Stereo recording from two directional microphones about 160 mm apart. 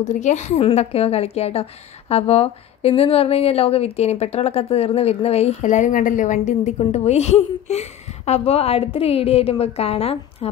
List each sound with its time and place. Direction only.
0.0 s a woman's voice: 50° left (ahead or behind)